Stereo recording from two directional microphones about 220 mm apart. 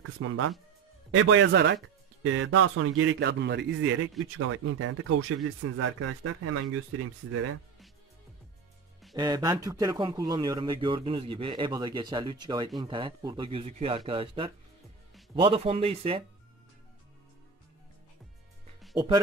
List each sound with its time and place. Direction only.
0.2 s speech: 75° right (ahead or behind)
1.1 s a man's voice: 60° right (ahead or behind)
2.2 s a man's voice: 65° right (ahead or behind)
4.4 s speech: 70° right (ahead or behind); by 6.6 s 90° right
9.1 s a man's voice: 20° right (ahead or behind)